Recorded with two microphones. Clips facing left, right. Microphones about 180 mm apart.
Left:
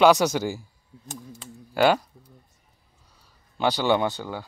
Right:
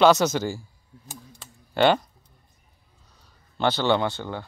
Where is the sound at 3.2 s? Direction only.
10° left (ahead or behind).